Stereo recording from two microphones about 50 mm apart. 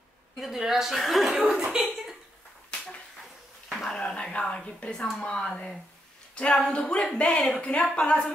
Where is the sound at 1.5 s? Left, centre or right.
Centre.